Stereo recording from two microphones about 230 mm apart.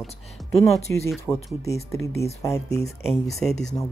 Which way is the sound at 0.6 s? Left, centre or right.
Centre.